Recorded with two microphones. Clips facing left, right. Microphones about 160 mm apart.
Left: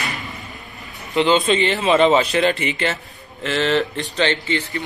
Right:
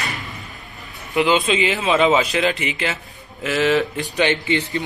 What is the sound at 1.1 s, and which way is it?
A man's voice, centre (ahead or behind).